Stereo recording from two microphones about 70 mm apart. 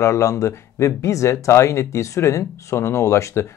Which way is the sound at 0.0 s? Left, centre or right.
Left.